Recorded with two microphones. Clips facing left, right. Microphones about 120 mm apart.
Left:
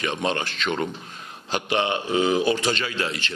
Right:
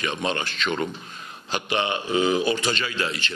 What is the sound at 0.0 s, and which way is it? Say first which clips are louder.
A man's voice: left 1 dB; 45° left (ahead or behind).